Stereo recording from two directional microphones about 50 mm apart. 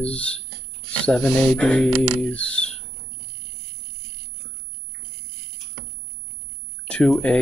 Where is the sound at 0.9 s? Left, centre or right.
Left.